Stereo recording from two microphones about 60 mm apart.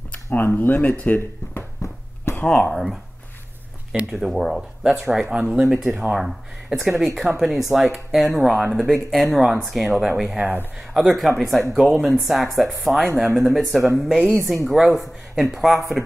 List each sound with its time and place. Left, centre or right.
0.1 s speech: left
1.8 s a sound: left
2.4 s speech: centre
2.7 s speech: centre
4.1 s speech: centre